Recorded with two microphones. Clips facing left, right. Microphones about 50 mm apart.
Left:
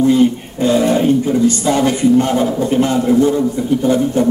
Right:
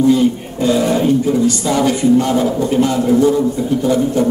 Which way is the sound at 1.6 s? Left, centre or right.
Left.